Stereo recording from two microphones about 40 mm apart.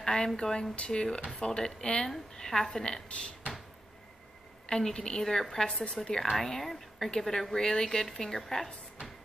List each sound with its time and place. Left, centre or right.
0.0 s a woman's voice: centre
4.6 s a woman's voice: centre
6.0 s a woman's voice: centre